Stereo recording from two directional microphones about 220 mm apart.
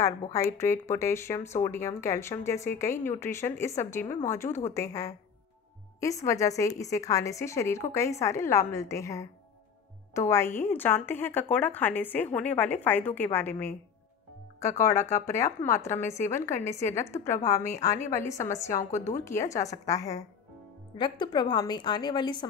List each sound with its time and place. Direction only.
0.0 s a woman's voice: 15° left (ahead or behind)
18.8 s speech: 30° left (ahead or behind)
19.2 s a woman's voice: 15° left (ahead or behind)